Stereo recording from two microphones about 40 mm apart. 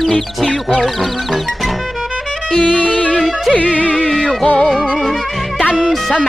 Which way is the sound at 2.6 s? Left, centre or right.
Left.